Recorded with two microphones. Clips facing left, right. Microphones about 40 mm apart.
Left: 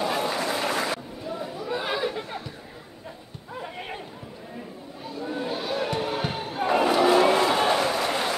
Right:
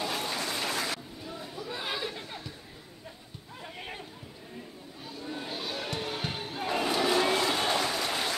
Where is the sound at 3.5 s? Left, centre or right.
Centre.